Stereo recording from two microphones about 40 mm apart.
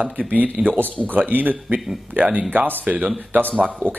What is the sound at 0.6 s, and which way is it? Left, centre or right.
Speech, right.